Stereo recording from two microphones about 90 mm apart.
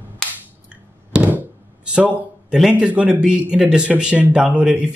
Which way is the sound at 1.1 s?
15° right (ahead or behind).